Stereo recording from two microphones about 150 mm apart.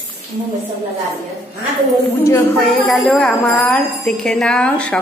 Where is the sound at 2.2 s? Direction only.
20° left (ahead or behind).